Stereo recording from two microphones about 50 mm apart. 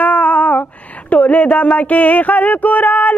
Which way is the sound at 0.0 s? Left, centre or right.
Left.